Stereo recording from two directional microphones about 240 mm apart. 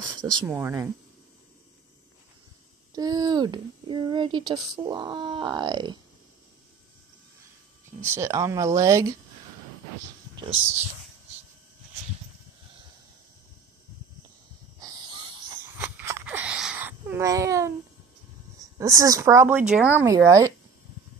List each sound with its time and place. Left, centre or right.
0.1 s speech: centre
2.9 s speech: centre
8.0 s speech: centre
14.8 s wheeze: centre
15.8 s a sound: centre
18.8 s speech: centre